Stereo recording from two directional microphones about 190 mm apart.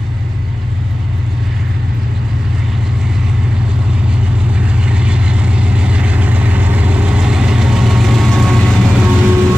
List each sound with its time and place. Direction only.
4.6 s vehicle: 5° right (ahead or behind)